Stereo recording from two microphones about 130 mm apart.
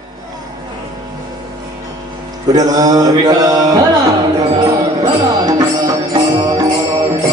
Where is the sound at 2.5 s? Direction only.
30° right (ahead or behind).